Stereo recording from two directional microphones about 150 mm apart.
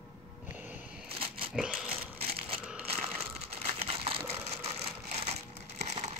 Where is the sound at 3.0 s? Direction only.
45° right (ahead or behind).